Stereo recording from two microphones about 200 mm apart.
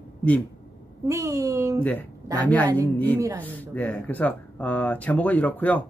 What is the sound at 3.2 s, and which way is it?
Speech, 10° right (ahead or behind).